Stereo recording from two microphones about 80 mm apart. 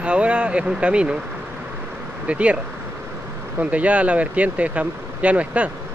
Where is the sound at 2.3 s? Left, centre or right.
Centre.